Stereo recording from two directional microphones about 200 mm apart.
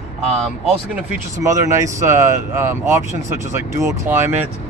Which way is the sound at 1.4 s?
15° right (ahead or behind).